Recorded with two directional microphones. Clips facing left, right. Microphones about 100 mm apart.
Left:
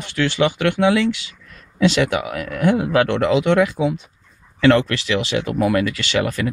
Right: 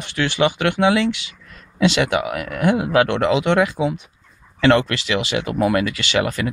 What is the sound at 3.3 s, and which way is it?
Speech, 20° right (ahead or behind).